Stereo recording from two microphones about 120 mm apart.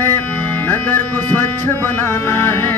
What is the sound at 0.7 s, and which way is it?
Music, 15° left (ahead or behind).